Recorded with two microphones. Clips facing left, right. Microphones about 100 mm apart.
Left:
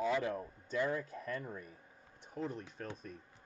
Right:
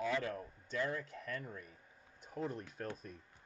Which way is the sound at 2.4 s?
40° right (ahead or behind).